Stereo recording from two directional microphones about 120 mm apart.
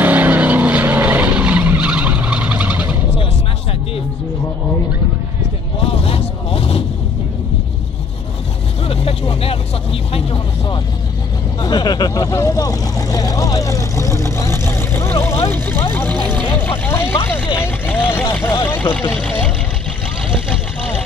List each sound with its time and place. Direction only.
0.0 s vehicle: 15° right (ahead or behind)
5.9 s vehicle: 50° left (ahead or behind)
8.8 s vehicle: 55° left (ahead or behind); by 19.2 s 20° left (ahead or behind)